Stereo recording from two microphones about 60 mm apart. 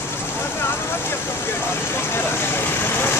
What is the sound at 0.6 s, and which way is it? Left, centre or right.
Vehicle, left.